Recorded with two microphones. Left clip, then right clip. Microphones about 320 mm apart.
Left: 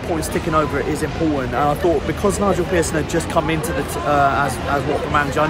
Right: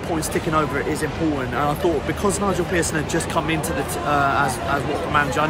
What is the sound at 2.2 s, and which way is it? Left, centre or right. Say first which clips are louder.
Speech: left 3 dB; centre.